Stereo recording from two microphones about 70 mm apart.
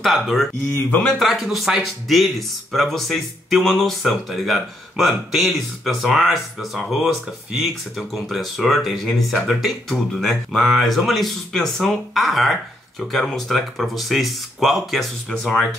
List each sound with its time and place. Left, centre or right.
0.0 s speech: centre
0.8 s a man's voice: centre
1.1 s speech: centre
8.1 s speech: centre